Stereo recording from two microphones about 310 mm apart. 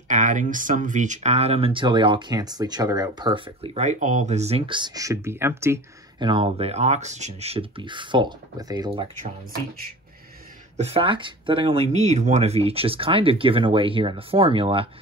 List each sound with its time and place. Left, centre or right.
0.1 s speech: right
10.8 s speech: centre